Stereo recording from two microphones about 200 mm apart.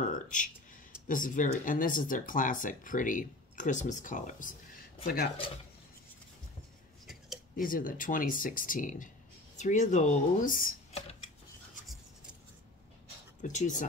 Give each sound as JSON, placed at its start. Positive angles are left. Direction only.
{"t": 0.0, "sound": "a sound", "side_deg": 40}
{"t": 1.0, "sound": "speech", "side_deg": 40}
{"t": 7.5, "sound": "speech", "side_deg": 45}
{"t": 13.4, "sound": "speech", "side_deg": 40}